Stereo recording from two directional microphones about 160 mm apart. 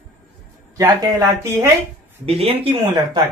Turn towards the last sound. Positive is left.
turn(degrees=-30)  # may be behind; listen again after turning